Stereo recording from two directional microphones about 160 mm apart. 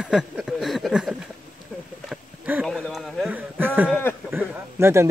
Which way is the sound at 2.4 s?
5° right (ahead or behind).